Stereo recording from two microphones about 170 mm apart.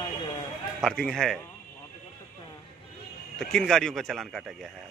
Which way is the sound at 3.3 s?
5° left (ahead or behind).